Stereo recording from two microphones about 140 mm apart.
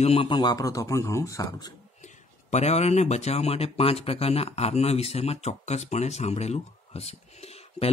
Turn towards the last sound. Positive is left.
turn(degrees=50)  # may be behind; listen again after turning